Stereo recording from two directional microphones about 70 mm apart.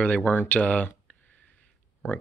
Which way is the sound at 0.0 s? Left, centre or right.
Left.